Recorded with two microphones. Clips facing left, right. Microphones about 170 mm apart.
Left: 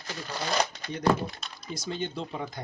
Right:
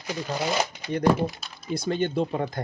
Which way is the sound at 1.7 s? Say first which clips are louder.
Right 8 dB; 60° right (ahead or behind).